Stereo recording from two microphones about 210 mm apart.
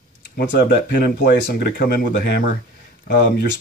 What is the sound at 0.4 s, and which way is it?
Speech, 55° left (ahead or behind).